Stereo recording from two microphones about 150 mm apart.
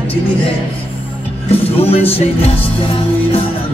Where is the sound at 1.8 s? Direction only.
40° left (ahead or behind).